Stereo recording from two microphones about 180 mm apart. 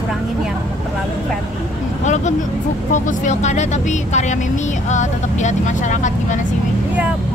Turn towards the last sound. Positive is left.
turn(degrees=40)  # may be behind; listen again after turning